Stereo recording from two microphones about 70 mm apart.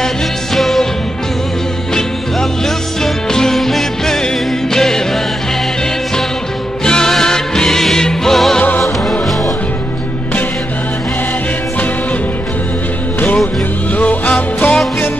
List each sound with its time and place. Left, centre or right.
0.6 s music: centre
2.0 s music: centre
6.8 s music: centre
8.5 s music: left
13.9 s music: centre